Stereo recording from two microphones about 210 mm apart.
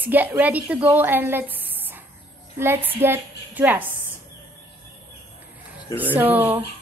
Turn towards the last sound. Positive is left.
turn(degrees=-10)  # may be behind; listen again after turning